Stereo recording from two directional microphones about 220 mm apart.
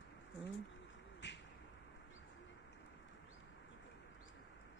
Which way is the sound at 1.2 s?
55° left (ahead or behind).